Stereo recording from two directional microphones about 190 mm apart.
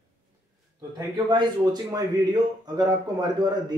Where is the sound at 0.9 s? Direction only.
25° right (ahead or behind).